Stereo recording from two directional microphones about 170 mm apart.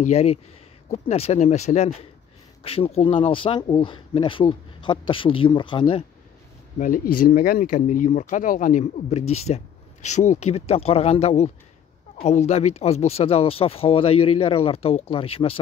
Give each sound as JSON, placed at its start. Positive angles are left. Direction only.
{"t": 0.0, "sound": "speech", "side_deg": 40}
{"t": 6.8, "sound": "speech", "side_deg": 55}